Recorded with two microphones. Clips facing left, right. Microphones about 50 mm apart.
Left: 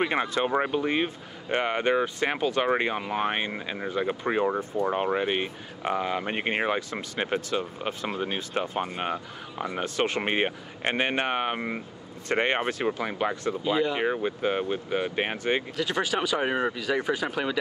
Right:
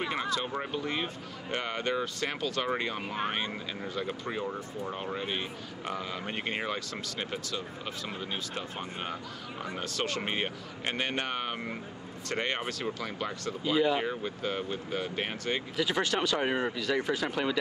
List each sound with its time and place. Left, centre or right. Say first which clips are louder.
0.0 s speech: left 6 dB; left
13.7 s speech: even; centre
13.9 s speech: left 5 dB; left
15.7 s speech: left 2 dB; centre